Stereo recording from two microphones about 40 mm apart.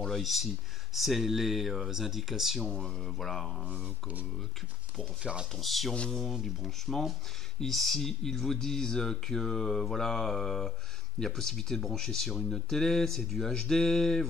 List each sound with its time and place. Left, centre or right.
0.1 s speech: centre
2.7 s speech: centre
5.2 s speech: right
5.6 s speech: centre